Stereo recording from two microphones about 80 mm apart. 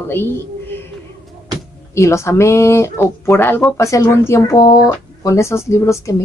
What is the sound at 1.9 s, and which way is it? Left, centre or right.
A woman's voice, left.